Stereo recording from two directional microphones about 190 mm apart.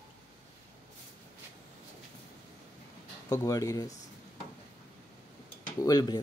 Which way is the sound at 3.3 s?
15° left (ahead or behind).